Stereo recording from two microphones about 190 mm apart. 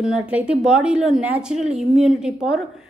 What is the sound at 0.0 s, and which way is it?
A woman's voice, 5° right (ahead or behind).